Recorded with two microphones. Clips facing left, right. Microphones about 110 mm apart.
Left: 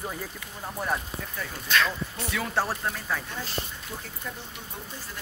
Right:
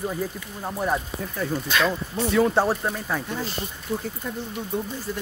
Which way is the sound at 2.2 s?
25° right (ahead or behind).